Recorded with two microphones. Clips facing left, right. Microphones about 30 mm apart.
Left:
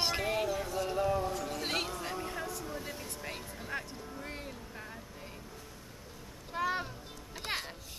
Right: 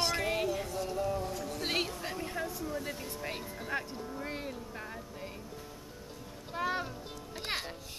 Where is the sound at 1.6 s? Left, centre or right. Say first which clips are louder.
Right 4 dB; centre.